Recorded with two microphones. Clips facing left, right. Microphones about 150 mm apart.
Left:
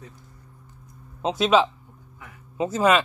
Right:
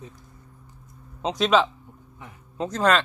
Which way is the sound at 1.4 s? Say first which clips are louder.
Left 1 dB; 5° left (ahead or behind).